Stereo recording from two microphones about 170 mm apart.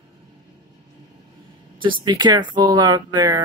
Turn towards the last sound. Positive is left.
turn(degrees=-25)  # may be behind; listen again after turning